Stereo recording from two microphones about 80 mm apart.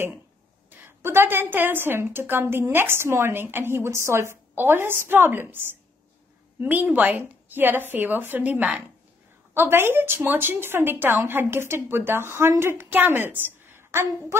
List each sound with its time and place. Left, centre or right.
0.7 s a woman's voice: right